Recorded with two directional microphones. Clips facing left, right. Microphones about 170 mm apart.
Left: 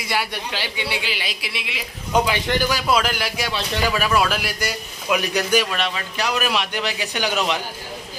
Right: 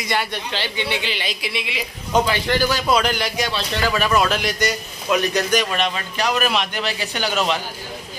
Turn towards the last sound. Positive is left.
turn(degrees=10)  # may be behind; listen again after turning